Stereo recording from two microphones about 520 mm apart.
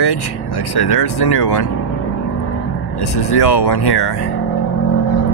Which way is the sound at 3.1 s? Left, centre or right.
Left.